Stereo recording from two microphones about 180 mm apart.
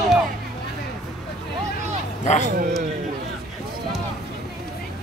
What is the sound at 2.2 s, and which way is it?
Speech, 45° left (ahead or behind).